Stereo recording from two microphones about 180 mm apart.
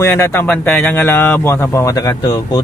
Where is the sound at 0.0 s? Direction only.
15° left (ahead or behind).